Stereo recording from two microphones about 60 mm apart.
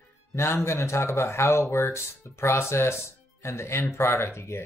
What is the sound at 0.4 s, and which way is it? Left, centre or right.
Speech, left.